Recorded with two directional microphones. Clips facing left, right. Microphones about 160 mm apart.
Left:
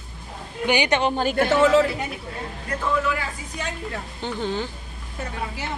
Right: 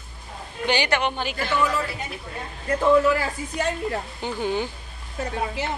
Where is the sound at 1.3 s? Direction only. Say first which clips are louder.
Left 7 dB; 50° left (ahead or behind).